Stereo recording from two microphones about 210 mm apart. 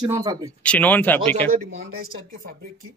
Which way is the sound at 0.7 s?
5° left (ahead or behind).